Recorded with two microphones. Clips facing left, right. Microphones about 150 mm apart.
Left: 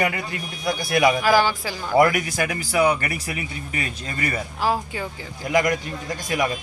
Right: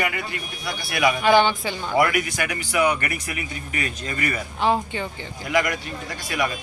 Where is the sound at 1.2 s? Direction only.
Centre (ahead or behind).